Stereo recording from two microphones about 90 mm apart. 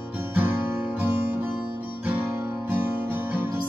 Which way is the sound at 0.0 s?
20° right (ahead or behind).